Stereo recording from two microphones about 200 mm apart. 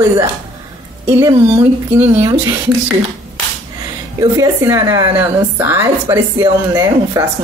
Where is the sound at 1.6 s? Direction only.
10° right (ahead or behind).